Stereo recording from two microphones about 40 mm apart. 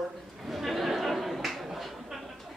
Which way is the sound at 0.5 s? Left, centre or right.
Centre.